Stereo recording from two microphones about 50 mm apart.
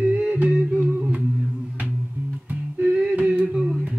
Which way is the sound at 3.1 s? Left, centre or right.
Right.